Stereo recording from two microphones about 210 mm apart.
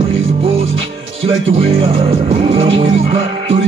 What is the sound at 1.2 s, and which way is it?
Music, 30° right (ahead or behind).